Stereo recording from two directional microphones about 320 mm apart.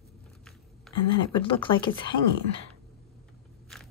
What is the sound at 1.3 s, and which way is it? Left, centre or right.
Speech, centre.